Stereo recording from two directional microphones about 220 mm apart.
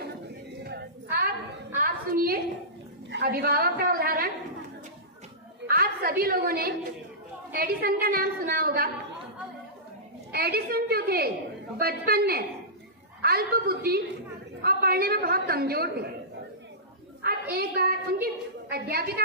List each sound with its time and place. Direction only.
0.7 s a sound: 45° right (ahead or behind)
3.1 s a woman's voice: 45° right (ahead or behind)
5.7 s a woman's voice: 45° right (ahead or behind)
10.3 s a woman's voice: 45° right (ahead or behind)
17.2 s a woman's voice: 45° right (ahead or behind)